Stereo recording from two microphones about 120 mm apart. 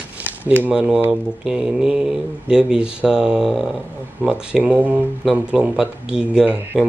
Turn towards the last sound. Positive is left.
turn(degrees=-10)  # may be behind; listen again after turning